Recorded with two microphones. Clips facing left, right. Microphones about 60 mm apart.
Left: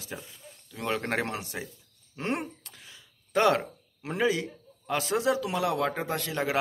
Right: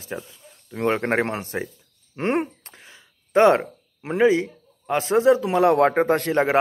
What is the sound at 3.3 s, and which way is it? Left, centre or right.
A man's voice, right.